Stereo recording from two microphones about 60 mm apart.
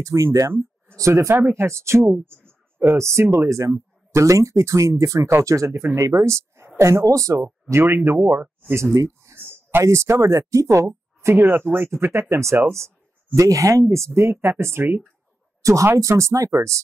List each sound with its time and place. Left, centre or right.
0.0 s speech: right
5.7 s speech: right
7.7 s speech: right
8.7 s speech: right
9.4 s a sound: right
9.8 s speech: right
11.1 s speech: right
12.7 s a sound: right
13.5 s speech: right
15.6 s speech: right